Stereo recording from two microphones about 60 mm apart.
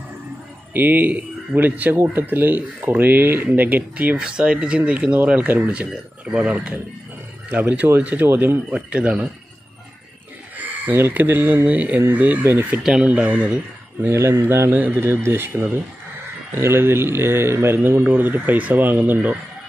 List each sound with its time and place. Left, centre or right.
0.7 s speech: right
4.2 s speech: centre; by 8.7 s right
8.7 s speech: right
10.6 s speech: right
12.4 s speech: right
13.0 s speech: right
14.0 s speech: right